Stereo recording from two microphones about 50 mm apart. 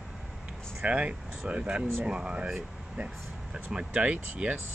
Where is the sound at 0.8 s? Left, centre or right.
Right.